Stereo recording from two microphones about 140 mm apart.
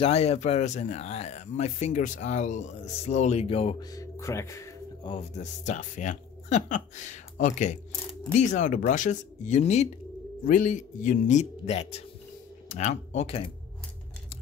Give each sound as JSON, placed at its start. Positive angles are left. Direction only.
{"t": 0.0, "sound": "a man's voice", "side_deg": 45}
{"t": 3.9, "sound": "speech", "side_deg": 20}
{"t": 5.4, "sound": "speech", "side_deg": 60}
{"t": 10.4, "sound": "speech", "side_deg": 70}